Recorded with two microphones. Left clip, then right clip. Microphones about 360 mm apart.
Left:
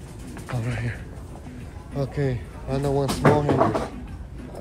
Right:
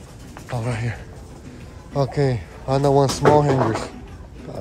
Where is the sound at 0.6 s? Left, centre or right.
Centre.